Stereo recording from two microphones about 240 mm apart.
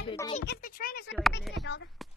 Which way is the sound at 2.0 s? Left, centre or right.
Centre.